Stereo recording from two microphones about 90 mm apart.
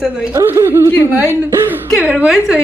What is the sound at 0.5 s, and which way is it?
Speech, 30° right (ahead or behind).